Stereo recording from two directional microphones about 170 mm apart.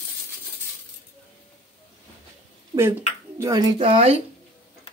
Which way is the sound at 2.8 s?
15° right (ahead or behind).